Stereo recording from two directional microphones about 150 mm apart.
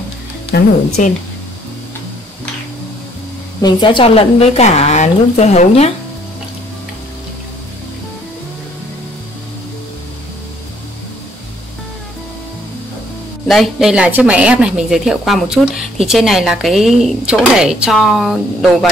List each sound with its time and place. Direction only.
0.5 s speech: 90° left
1.0 s speech: 60° left (ahead or behind)
3.6 s a woman's voice: 35° left (ahead or behind)
13.5 s speech: centre (ahead or behind)